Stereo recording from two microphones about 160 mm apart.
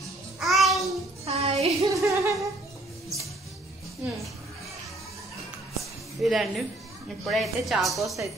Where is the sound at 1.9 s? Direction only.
20° right (ahead or behind).